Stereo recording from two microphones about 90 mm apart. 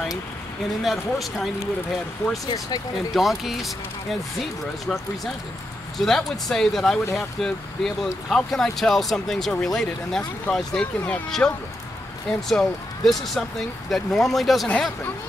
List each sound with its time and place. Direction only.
0.8 s speech: centre (ahead or behind)
2.4 s speech: 45° left (ahead or behind)
3.1 s speech: centre (ahead or behind)